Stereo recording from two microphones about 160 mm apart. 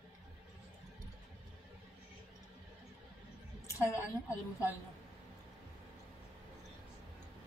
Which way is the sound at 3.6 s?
20° left (ahead or behind).